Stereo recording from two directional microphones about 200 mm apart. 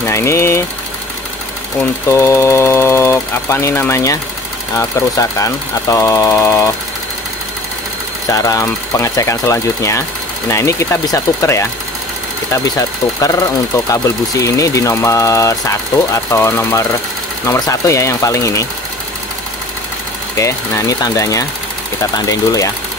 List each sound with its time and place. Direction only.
0.0 s speech: 15° left (ahead or behind)
1.8 s speech: 10° left (ahead or behind)
8.3 s speech: 15° left (ahead or behind)
12.6 s speech: 15° left (ahead or behind)
20.3 s speech: 15° left (ahead or behind)